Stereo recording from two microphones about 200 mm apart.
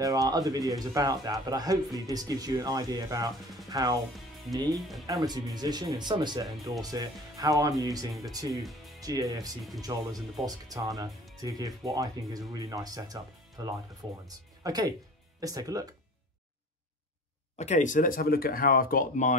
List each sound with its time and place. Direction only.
0.0 s speech: 15° right (ahead or behind)
4.7 s speech: centre (ahead or behind)
5.0 s speech: 20° right (ahead or behind)
17.6 s speech: 35° left (ahead or behind)